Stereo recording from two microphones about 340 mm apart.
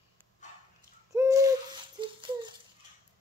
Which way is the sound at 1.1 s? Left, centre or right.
Centre.